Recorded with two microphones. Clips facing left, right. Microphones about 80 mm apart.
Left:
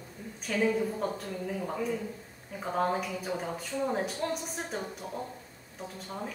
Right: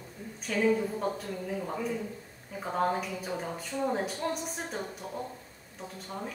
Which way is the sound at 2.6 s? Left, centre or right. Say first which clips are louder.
Even; centre.